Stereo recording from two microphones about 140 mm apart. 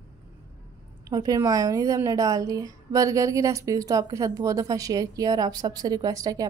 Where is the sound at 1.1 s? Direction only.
25° right (ahead or behind).